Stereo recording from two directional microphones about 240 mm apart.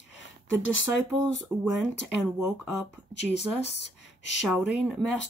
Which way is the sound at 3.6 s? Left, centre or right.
Left.